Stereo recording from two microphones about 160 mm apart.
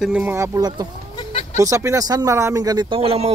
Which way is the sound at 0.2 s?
15° right (ahead or behind).